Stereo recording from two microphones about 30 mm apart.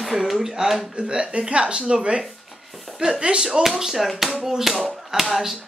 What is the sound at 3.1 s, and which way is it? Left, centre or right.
Speech, right.